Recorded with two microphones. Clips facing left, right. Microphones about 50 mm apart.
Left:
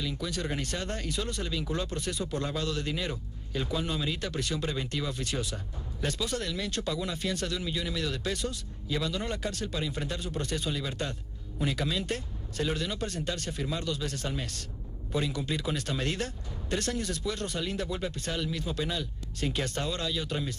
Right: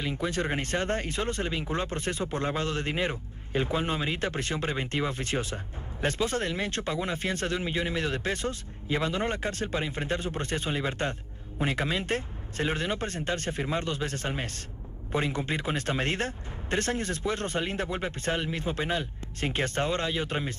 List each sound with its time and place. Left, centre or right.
0.0 s speech: right